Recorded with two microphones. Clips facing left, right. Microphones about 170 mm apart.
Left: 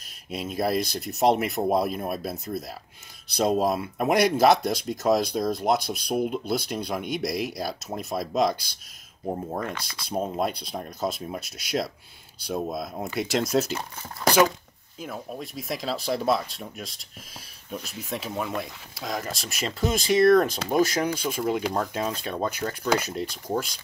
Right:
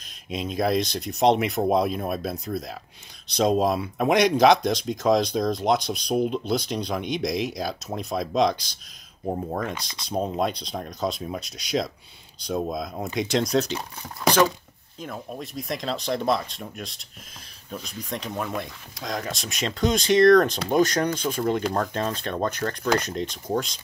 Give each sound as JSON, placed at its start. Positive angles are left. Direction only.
{"t": 0.3, "sound": "speech", "side_deg": 5}
{"t": 9.8, "sound": "speech", "side_deg": -20}
{"t": 10.0, "sound": "speech", "side_deg": 5}
{"t": 15.0, "sound": "speech", "side_deg": 5}